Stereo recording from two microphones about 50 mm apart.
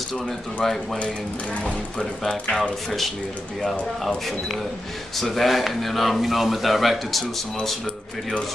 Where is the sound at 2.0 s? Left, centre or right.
Left.